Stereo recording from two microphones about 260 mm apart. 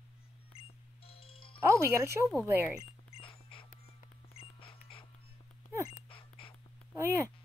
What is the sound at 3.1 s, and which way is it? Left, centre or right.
Music, left.